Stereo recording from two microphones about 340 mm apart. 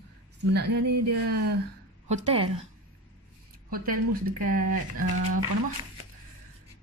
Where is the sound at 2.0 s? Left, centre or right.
Centre.